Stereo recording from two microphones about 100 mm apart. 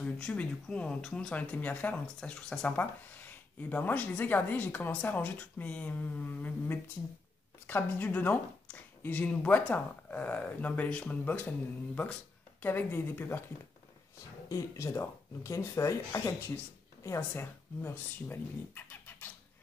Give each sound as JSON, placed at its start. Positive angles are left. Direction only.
{"t": 0.0, "sound": "a woman's voice", "side_deg": 10}
{"t": 14.5, "sound": "speech", "side_deg": 30}